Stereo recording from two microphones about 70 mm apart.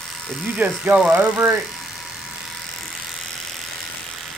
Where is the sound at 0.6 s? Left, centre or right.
Right.